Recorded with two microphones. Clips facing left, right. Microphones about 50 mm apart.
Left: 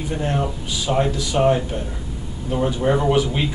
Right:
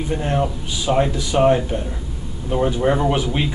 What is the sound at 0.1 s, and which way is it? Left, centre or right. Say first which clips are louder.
A man's voice: right 2 dB; centre.